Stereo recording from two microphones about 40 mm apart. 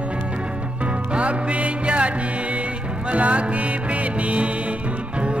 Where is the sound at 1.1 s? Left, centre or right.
Right.